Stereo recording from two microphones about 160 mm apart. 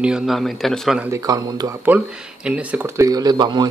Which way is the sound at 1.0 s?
20° right (ahead or behind).